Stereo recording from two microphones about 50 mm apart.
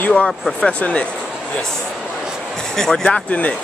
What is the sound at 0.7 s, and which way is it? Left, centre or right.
Speech, left.